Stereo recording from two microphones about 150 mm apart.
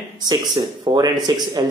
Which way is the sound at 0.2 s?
25° right (ahead or behind).